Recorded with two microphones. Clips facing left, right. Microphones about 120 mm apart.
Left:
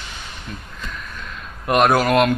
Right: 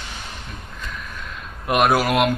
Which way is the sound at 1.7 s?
5° right (ahead or behind).